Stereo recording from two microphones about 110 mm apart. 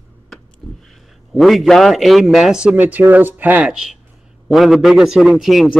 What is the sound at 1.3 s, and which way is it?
A man's voice, centre (ahead or behind).